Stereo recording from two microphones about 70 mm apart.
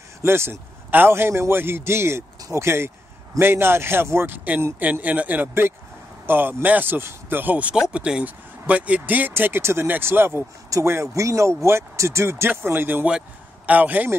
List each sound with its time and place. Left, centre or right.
0.2 s speech: right
4.7 s speech: right
7.7 s speech: centre